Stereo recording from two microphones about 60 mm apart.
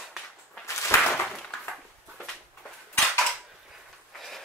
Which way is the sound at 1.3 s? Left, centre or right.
Centre.